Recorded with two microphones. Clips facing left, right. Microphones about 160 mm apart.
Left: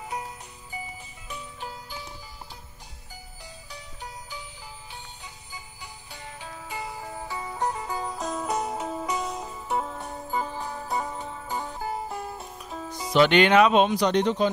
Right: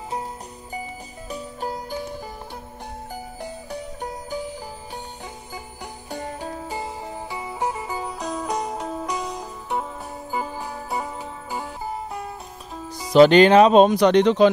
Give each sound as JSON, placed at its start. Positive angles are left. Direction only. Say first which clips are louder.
{"t": 1.3, "sound": "music", "louder": "right 8 dB", "side_deg": -40}
{"t": 3.4, "sound": "music", "louder": "right 11 dB", "side_deg": -50}
{"t": 6.0, "sound": "music", "louder": "right 12 dB", "side_deg": -45}
{"t": 7.2, "sound": "music", "louder": "right 2 dB", "side_deg": -15}
{"t": 10.3, "sound": "jingle bell", "louder": "right 2 dB", "side_deg": -10}
{"t": 11.5, "sound": "music", "louder": "right 1 dB", "side_deg": 0}
{"t": 13.1, "sound": "speech", "louder": "right 7 dB", "side_deg": -35}
{"t": 13.9, "sound": "speech", "louder": "right 7 dB", "side_deg": -70}